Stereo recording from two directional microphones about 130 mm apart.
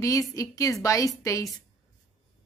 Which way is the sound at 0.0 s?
25° left (ahead or behind).